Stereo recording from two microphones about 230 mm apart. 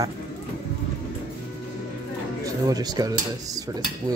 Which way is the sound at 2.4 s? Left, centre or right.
Centre.